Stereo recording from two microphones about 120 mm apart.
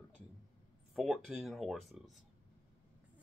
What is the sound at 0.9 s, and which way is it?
Speech, 5° right (ahead or behind).